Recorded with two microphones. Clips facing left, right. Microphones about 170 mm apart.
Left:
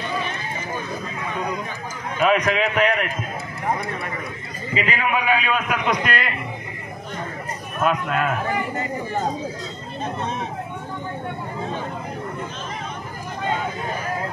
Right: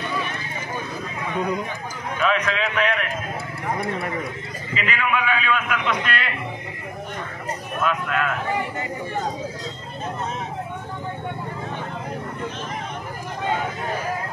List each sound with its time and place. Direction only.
2.1 s a man's voice: 40° left (ahead or behind)
4.7 s a man's voice: 40° left (ahead or behind)
7.8 s a man's voice: 40° left (ahead or behind)